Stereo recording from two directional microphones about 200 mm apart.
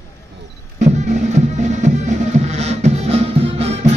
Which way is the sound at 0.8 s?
35° right (ahead or behind).